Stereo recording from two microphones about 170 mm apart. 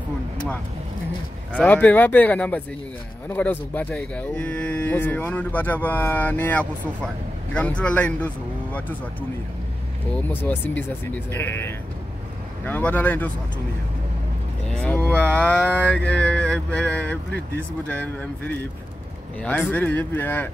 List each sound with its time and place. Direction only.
1.6 s speech: 10° left (ahead or behind)
10.2 s speech: 10° left (ahead or behind)
14.7 s speech: centre (ahead or behind)
19.7 s speech: 10° left (ahead or behind)